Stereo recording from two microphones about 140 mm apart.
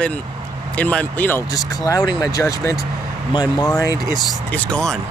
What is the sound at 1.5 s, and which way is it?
Speech, 25° left (ahead or behind).